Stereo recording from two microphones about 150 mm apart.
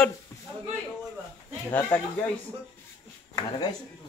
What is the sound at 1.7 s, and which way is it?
Speech, 20° left (ahead or behind).